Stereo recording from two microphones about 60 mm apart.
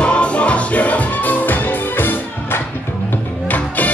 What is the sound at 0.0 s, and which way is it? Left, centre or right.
Music, centre.